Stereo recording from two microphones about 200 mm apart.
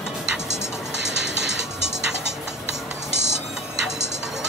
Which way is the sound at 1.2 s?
60° right (ahead or behind).